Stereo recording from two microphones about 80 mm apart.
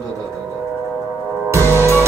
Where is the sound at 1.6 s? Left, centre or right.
Left.